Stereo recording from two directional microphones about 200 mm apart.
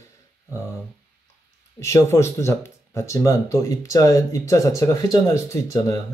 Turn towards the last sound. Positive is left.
turn(degrees=15)  # may be behind; listen again after turning